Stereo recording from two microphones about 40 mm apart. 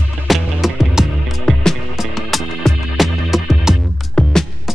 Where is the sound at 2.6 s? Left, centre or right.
Centre.